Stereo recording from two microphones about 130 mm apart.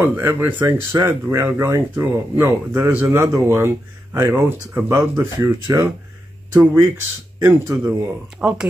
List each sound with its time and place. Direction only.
0.0 s speech: 15° right (ahead or behind)